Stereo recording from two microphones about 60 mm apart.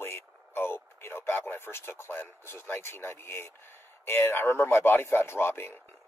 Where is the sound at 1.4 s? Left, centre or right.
Left.